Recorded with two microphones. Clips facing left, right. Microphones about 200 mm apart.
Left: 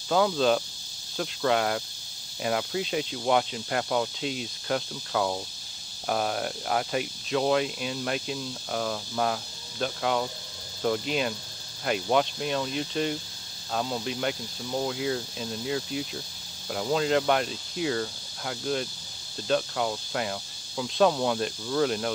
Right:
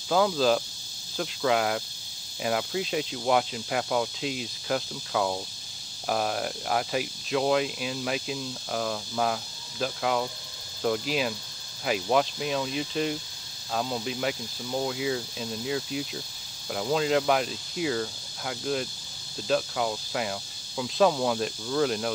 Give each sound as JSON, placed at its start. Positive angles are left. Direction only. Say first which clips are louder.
{"t": 0.1, "sound": "speech", "louder": "even", "side_deg": 0}